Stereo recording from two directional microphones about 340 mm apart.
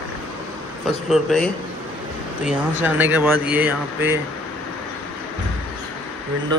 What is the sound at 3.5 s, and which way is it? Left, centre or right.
Speech, right.